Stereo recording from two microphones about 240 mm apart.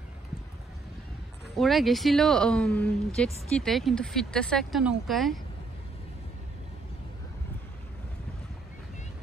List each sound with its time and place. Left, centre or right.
1.6 s speech: centre